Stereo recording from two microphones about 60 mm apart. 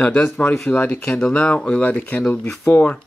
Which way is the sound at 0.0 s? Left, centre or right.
Centre.